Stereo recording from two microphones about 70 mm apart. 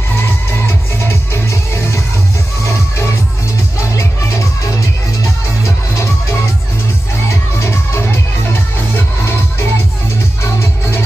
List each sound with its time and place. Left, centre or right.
0.1 s music: left
7.2 s music: left